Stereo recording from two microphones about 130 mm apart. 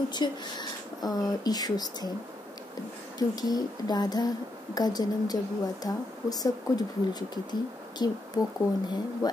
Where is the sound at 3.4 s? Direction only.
30° left (ahead or behind).